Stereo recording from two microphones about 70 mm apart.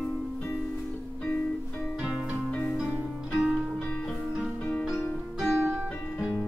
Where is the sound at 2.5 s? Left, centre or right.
Centre.